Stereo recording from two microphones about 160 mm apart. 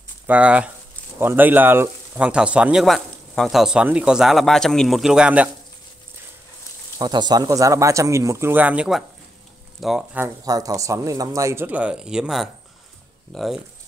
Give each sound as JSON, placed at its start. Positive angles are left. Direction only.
{"t": 0.3, "sound": "speech", "side_deg": -10}
{"t": 7.0, "sound": "speech", "side_deg": -25}
{"t": 10.1, "sound": "speech", "side_deg": -20}